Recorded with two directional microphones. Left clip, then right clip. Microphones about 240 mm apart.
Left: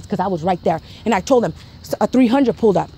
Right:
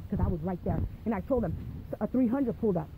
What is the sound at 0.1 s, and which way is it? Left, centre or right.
Speech, left.